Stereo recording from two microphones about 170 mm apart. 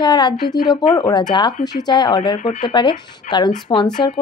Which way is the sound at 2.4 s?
45° left (ahead or behind).